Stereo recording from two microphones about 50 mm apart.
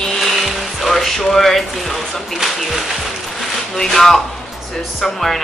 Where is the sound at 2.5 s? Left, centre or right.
Centre.